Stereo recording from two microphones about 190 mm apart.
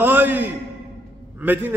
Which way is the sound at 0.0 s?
10° right (ahead or behind).